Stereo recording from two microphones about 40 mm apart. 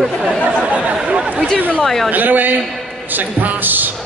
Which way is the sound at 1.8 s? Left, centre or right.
Centre.